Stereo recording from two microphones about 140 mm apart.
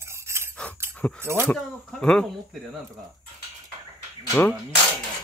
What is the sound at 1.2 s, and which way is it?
Speech, 15° right (ahead or behind).